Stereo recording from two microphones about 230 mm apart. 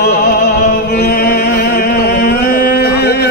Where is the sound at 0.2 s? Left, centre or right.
Left.